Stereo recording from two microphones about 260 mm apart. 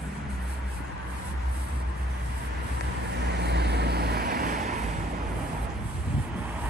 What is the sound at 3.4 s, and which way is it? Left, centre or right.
Vehicle, right.